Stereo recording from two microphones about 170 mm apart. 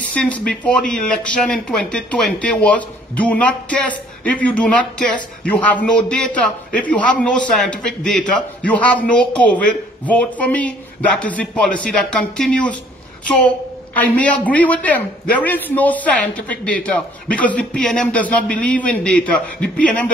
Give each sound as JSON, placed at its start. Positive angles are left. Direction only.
{"t": 0.0, "sound": "a man's voice", "side_deg": 10}
{"t": 13.9, "sound": "a man's voice", "side_deg": 10}